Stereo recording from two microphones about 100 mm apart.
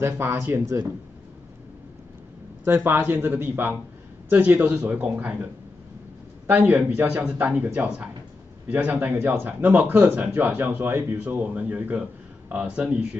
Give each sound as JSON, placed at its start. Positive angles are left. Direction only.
{"t": 0.0, "sound": "speech", "side_deg": -30}
{"t": 2.6, "sound": "a man's voice", "side_deg": -20}